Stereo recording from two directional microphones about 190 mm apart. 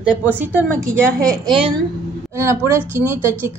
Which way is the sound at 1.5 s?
30° right (ahead or behind).